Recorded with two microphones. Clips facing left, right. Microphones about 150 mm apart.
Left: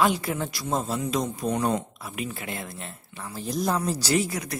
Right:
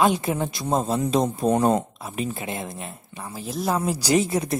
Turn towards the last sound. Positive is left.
turn(degrees=-25)  # may be behind; listen again after turning